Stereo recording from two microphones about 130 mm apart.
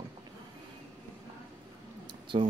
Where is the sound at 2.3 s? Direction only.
45° right (ahead or behind).